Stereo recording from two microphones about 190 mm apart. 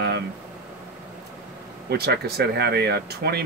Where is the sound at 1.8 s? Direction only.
55° right (ahead or behind).